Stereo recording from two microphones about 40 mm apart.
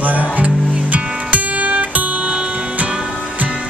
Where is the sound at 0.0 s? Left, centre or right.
Right.